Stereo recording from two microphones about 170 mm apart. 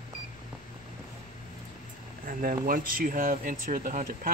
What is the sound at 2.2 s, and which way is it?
Speech, 55° right (ahead or behind).